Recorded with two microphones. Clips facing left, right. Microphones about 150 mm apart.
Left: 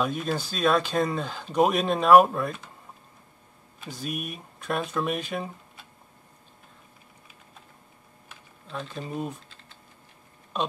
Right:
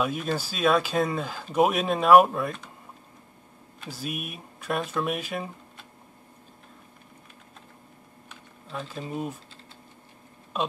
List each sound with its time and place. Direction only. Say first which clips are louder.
0.0 s speech: even; centre (ahead or behind)
3.8 s speech: left 1 dB; 5° right (ahead or behind)
8.3 s typing: even; 5° right (ahead or behind)
10.5 s speech: even; 5° right (ahead or behind)